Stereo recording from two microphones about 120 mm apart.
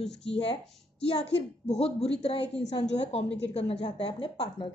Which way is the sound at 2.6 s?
70° left (ahead or behind).